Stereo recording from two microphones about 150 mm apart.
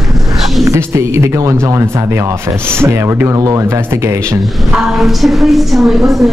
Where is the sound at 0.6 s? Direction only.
20° right (ahead or behind).